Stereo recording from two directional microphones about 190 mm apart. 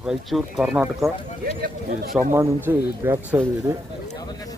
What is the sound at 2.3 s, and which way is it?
Speech, 10° right (ahead or behind).